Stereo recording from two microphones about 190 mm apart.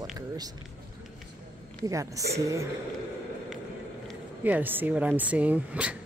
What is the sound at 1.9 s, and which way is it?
Speech, 15° right (ahead or behind).